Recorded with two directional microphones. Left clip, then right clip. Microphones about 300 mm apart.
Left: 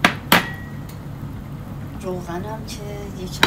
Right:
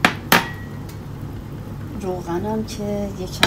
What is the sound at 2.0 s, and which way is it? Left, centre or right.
A woman's voice, right.